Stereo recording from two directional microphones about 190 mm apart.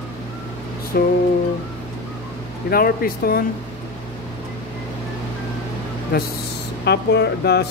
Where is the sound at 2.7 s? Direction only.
50° left (ahead or behind).